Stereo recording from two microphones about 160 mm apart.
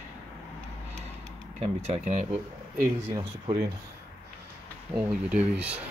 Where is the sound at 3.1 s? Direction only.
30° right (ahead or behind).